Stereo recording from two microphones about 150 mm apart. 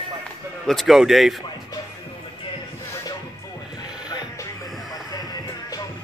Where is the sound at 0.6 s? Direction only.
Centre (ahead or behind).